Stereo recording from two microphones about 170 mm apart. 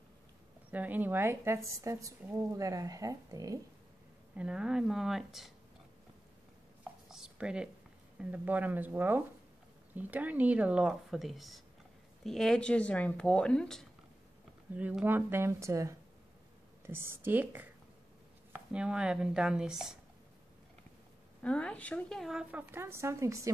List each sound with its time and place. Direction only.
0.7 s a woman's voice: 10° right (ahead or behind)
4.4 s speech: 5° right (ahead or behind)
7.1 s a woman's voice: 5° right (ahead or behind)
14.8 s a woman's voice: 10° right (ahead or behind)
18.7 s speech: 5° right (ahead or behind)
21.4 s a woman's voice: 5° left (ahead or behind); by 23.5 s 20° right (ahead or behind)